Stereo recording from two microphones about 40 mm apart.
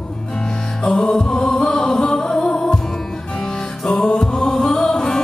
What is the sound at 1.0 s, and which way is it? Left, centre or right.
Music, centre.